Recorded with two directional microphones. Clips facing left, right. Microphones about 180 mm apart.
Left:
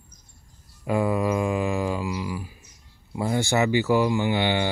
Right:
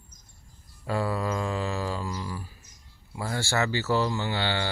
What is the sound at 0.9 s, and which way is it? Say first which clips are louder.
Speech: left 5 dB; 15° left (ahead or behind).